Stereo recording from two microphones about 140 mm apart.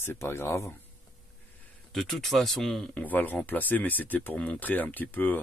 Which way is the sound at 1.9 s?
5° left (ahead or behind).